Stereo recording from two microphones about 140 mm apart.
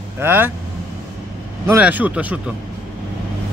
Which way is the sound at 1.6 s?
10° right (ahead or behind).